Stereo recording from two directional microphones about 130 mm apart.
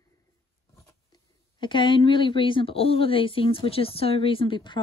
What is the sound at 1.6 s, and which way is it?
Speech, 40° left (ahead or behind).